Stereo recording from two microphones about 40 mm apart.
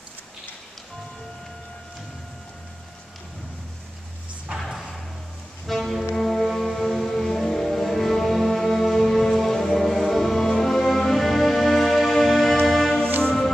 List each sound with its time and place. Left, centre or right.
5.7 s music: centre
13.2 s music: centre